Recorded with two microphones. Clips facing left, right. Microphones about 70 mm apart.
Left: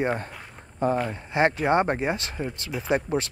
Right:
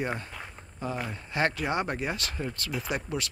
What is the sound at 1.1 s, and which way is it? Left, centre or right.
Speech, left.